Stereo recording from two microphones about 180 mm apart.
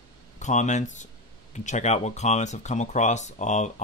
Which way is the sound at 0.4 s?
40° left (ahead or behind).